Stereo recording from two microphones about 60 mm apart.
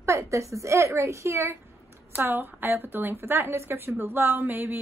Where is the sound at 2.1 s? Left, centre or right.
Right.